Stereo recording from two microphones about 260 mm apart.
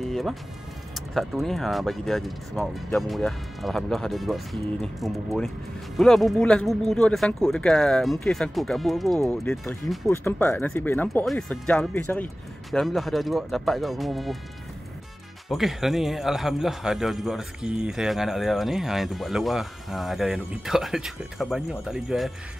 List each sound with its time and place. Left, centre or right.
0.0 s a man's voice: centre
15.4 s a man's voice: centre